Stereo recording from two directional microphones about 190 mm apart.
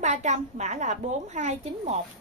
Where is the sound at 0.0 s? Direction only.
35° right (ahead or behind).